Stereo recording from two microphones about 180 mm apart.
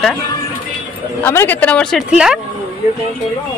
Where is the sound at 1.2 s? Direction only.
10° left (ahead or behind); by 2.3 s 5° right (ahead or behind).